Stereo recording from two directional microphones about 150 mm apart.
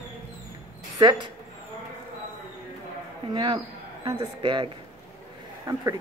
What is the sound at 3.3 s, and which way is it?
Speech, 35° right (ahead or behind).